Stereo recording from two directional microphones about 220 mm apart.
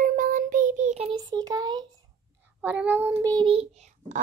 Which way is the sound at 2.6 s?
5° right (ahead or behind).